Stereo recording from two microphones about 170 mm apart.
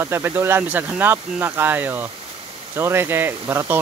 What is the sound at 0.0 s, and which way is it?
Speech, 15° right (ahead or behind).